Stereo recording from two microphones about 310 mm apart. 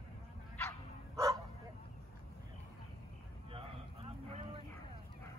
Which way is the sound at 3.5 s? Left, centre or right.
Centre.